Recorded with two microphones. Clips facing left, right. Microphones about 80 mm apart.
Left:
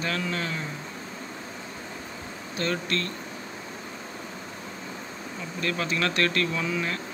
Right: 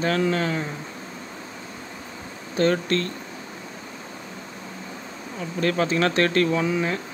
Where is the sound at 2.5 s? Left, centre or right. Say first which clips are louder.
Right 8 dB; right.